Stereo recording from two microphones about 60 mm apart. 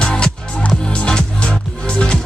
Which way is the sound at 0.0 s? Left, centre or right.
Centre.